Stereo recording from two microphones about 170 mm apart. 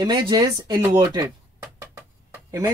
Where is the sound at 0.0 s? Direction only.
25° right (ahead or behind).